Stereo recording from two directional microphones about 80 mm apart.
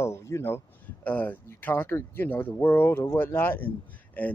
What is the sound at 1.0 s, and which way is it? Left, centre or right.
Speech, centre.